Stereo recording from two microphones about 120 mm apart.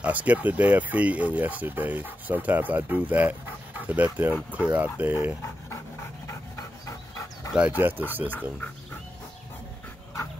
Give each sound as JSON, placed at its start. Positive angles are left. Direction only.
{"t": 0.0, "sound": "speech", "side_deg": -10}
{"t": 6.2, "sound": "dog", "side_deg": 25}
{"t": 7.5, "sound": "speech", "side_deg": -15}
{"t": 8.3, "sound": "speech", "side_deg": 10}